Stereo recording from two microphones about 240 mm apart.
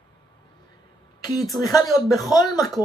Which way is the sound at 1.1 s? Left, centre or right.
Centre.